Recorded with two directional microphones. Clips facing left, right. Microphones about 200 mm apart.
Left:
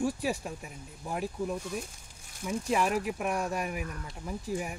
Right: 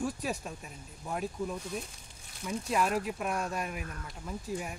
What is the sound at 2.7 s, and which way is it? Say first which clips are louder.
Speech: left 1 dB; 10° left (ahead or behind).